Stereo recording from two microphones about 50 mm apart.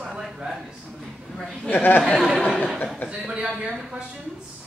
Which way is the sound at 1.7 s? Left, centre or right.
Left.